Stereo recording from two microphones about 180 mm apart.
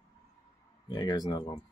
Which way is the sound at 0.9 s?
25° left (ahead or behind).